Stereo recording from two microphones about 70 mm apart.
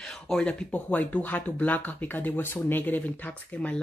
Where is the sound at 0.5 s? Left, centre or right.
Centre.